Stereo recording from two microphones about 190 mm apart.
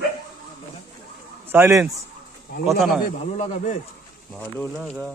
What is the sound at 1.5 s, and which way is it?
Speech, 15° right (ahead or behind).